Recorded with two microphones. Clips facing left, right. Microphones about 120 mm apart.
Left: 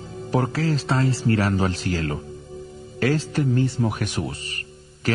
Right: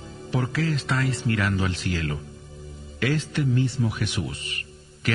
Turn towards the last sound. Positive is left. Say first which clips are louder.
# left 3 dB
turn(degrees=30)  # may be behind; listen again after turning